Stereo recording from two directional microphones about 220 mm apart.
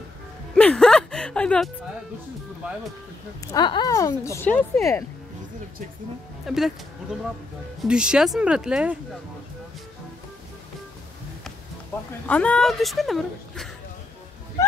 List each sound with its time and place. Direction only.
0.6 s speech: 5° left (ahead or behind)
3.5 s a woman's voice: 20° left (ahead or behind)
6.4 s speech: centre (ahead or behind)
7.8 s a woman's voice: 5° right (ahead or behind)
12.3 s a woman's voice: 5° left (ahead or behind)